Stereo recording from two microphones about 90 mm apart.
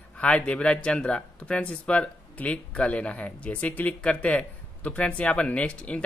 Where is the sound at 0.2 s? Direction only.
10° left (ahead or behind).